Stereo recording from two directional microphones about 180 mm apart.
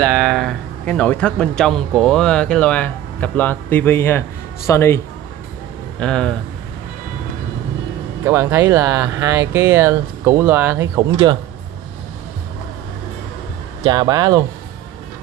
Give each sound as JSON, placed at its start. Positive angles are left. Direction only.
{"t": 0.0, "sound": "speech", "side_deg": 0}
{"t": 8.2, "sound": "speech", "side_deg": -15}
{"t": 13.8, "sound": "speech", "side_deg": -20}